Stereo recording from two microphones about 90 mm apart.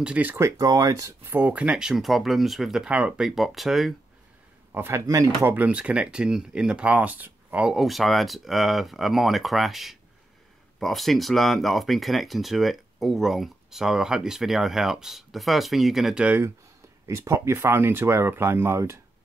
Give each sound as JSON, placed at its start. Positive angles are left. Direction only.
{"t": 0.0, "sound": "speech", "side_deg": -15}
{"t": 0.4, "sound": "speech", "side_deg": -35}
{"t": 1.3, "sound": "speech", "side_deg": -15}
{"t": 4.7, "sound": "speech", "side_deg": -25}
{"t": 5.0, "sound": "speech", "side_deg": -40}
{"t": 5.5, "sound": "speech", "side_deg": -15}
{"t": 7.7, "sound": "speech", "side_deg": 0}
{"t": 17.1, "sound": "speech", "side_deg": -30}